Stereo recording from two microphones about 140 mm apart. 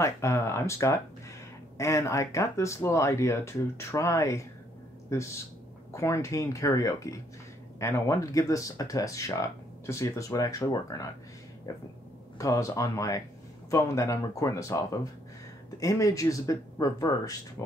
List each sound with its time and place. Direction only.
0.0 s speech: 20° left (ahead or behind)
15.8 s speech: 25° left (ahead or behind)